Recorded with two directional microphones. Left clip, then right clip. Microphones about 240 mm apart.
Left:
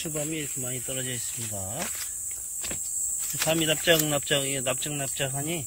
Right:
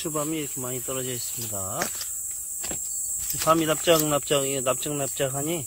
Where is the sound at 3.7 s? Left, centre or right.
Centre.